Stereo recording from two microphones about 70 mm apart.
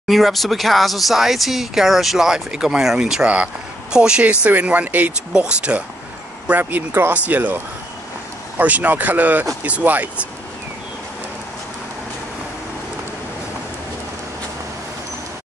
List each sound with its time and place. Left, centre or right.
0.1 s speech: centre; by 7.5 s right
8.5 s speech: right